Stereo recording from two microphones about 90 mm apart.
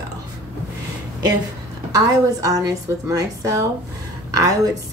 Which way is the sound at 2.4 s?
40° right (ahead or behind).